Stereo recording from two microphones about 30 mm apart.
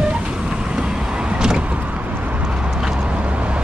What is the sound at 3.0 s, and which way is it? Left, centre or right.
Vehicle, right.